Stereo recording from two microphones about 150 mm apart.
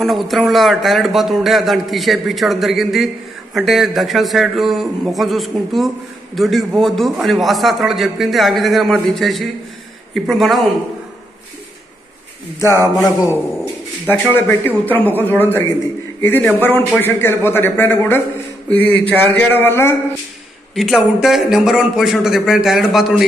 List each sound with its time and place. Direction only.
0.0 s speech: centre (ahead or behind)
12.5 s speech: 20° left (ahead or behind)
14.9 s a man's voice: 10° left (ahead or behind)
20.7 s speech: centre (ahead or behind)